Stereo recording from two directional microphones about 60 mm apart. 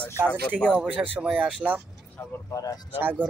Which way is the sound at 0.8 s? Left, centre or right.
Centre.